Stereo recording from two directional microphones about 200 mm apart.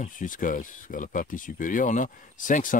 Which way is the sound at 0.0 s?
40° left (ahead or behind).